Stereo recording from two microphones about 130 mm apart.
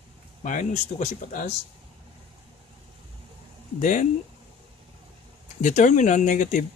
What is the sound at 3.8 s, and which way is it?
Speech, 80° left.